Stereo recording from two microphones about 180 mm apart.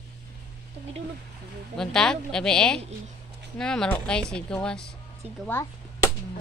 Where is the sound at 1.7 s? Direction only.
5° left (ahead or behind).